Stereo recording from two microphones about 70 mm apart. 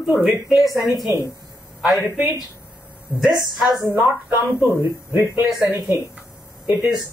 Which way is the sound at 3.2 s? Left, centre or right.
Centre.